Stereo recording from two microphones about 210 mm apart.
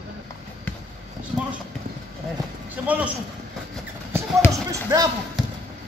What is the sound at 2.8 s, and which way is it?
Speech, 5° right (ahead or behind).